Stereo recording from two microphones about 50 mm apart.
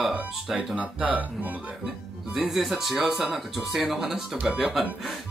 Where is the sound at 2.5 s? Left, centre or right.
Centre.